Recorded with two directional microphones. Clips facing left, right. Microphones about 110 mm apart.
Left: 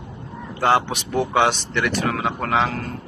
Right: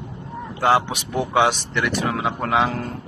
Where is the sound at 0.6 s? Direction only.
10° right (ahead or behind).